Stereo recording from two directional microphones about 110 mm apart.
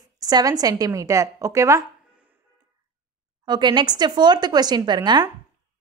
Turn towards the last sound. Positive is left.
turn(degrees=-40)  # may be behind; listen again after turning